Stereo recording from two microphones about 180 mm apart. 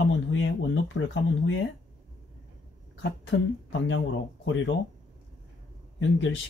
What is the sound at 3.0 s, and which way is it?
Speech, 90° left.